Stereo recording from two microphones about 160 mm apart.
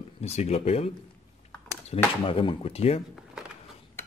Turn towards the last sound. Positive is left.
turn(degrees=40)  # may be behind; listen again after turning